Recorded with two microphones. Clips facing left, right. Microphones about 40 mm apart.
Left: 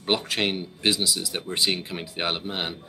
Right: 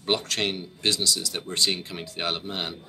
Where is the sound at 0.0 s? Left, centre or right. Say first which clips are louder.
Left 1 dB; centre.